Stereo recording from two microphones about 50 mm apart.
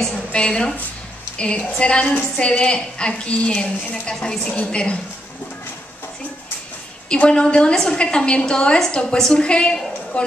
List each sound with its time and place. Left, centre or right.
0.0 s a woman's voice: centre
7.2 s a woman's voice: left